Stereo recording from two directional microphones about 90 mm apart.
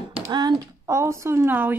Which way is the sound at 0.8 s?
30° right (ahead or behind).